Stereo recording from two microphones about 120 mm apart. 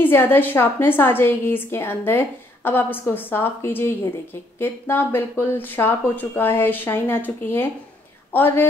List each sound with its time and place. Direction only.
0.0 s a woman's voice: 15° left (ahead or behind)